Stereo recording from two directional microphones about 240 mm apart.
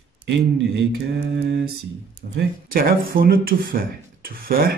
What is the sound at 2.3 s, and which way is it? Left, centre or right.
Speech, right.